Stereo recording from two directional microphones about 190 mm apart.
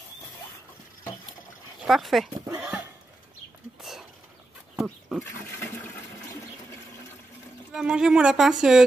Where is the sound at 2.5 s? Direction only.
5° right (ahead or behind).